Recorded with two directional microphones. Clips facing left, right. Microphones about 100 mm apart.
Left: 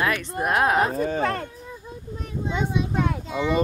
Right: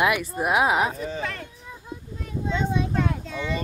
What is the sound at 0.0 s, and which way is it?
Speech, 10° right (ahead or behind).